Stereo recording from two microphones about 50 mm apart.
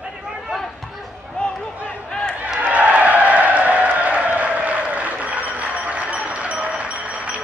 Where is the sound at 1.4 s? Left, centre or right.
Centre.